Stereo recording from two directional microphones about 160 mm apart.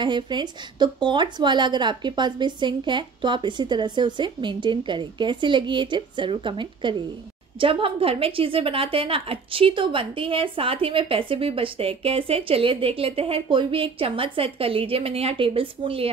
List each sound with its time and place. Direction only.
0.0 s a woman's voice: 30° right (ahead or behind)